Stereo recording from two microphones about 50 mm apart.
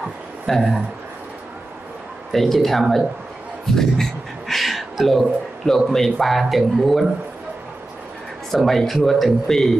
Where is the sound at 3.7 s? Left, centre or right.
Centre.